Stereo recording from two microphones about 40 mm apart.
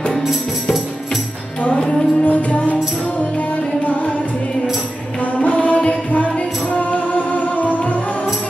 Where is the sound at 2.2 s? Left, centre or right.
Left.